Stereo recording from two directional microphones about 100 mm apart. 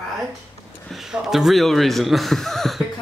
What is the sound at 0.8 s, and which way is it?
Speech, centre (ahead or behind).